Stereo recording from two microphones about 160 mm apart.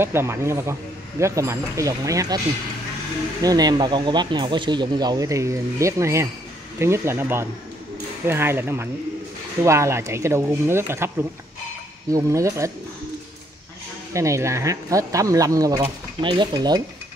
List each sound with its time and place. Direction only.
0.0 s speech: 15° right (ahead or behind)
3.4 s speech: 25° right (ahead or behind)
14.1 s speech: 20° right (ahead or behind)